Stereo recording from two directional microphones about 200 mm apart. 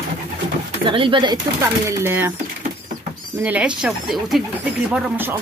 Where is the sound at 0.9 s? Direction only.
25° right (ahead or behind).